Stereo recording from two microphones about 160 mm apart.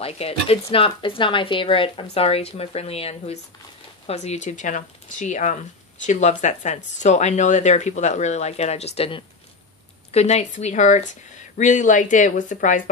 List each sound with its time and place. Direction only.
0.0 s a woman's voice: 35° left (ahead or behind)